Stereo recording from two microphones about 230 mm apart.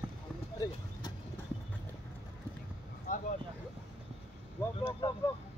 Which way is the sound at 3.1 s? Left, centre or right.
Left.